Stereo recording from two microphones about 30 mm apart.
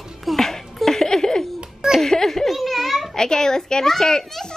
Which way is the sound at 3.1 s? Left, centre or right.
Left.